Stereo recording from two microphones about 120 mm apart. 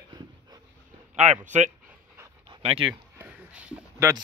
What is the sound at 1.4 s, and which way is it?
Speech, 85° right.